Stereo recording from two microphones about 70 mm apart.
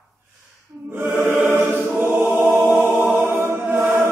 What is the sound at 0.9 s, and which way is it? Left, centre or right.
Choir, right.